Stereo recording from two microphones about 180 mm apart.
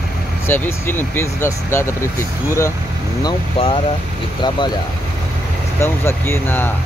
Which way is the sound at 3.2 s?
25° left (ahead or behind).